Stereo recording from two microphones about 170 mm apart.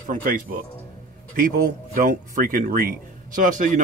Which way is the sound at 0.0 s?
55° right (ahead or behind).